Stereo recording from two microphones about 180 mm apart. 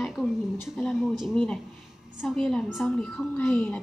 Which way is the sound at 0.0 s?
Centre (ahead or behind).